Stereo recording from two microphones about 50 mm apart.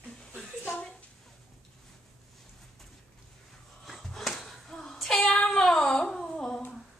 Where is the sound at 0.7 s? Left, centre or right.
Left.